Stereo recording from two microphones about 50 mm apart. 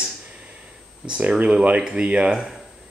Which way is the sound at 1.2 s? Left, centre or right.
Right.